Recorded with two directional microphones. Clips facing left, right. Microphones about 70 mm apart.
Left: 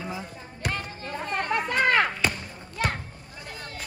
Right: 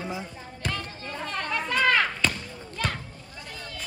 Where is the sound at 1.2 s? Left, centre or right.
Left.